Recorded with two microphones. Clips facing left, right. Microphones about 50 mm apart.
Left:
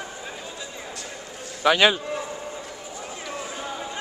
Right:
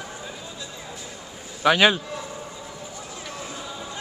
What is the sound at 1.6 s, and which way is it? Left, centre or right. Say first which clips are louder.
Speech: right 1 dB; centre.